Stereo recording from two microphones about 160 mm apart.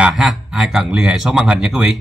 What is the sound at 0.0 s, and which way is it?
Speech, 5° right (ahead or behind).